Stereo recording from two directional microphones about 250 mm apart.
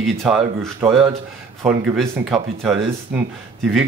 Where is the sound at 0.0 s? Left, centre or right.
Centre.